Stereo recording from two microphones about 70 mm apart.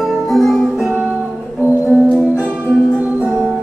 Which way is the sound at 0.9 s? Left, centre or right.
Right.